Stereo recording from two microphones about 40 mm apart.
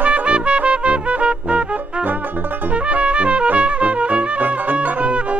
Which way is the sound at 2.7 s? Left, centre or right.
Right.